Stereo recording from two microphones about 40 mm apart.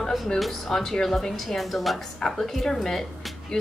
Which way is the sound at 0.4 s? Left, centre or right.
Centre.